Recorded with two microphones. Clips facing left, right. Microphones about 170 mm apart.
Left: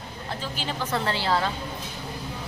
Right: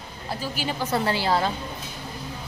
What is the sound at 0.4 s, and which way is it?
A woman's voice, 10° right (ahead or behind).